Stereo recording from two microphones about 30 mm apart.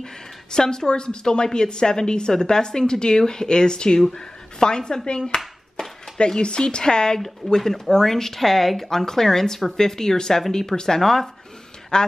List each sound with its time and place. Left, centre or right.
0.0 s a woman's voice: left
7.2 s speech: centre
8.8 s speech: centre
11.9 s a woman's voice: left